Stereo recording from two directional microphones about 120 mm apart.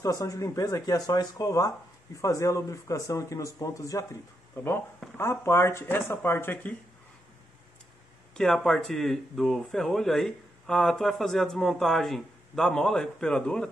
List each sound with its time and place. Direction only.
0.0 s speech: 30° left (ahead or behind)
4.6 s speech: 15° left (ahead or behind)
8.4 s speech: 5° left (ahead or behind)